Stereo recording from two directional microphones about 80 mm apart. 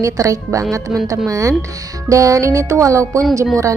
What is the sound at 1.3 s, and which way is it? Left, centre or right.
Speech, right.